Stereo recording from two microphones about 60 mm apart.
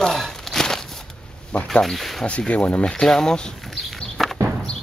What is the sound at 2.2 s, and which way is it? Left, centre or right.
Speech, centre.